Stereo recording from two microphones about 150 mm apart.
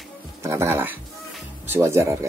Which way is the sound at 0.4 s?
15° right (ahead or behind).